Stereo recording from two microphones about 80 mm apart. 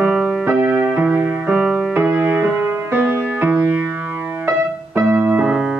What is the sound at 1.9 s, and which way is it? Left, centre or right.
Music, right.